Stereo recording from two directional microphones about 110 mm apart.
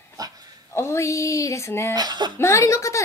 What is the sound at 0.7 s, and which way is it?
Speech, 25° left (ahead or behind).